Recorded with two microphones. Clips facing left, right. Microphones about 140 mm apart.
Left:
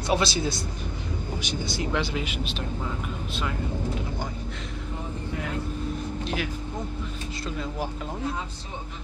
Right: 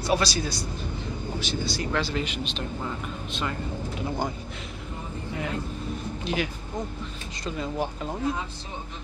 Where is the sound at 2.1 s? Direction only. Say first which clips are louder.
Right 1 dB; 10° left (ahead or behind).